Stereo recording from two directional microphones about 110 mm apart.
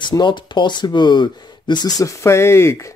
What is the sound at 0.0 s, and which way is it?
Speech, 45° left (ahead or behind).